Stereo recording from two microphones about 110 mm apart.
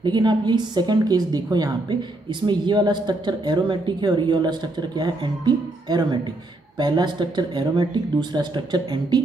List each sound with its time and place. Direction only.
0.0 s a woman's voice: 40° right (ahead or behind)